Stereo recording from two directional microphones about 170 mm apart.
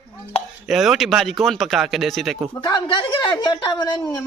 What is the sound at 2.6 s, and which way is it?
A woman's voice, 25° left (ahead or behind).